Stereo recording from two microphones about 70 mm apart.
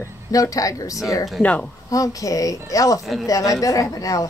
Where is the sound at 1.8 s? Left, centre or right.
Left.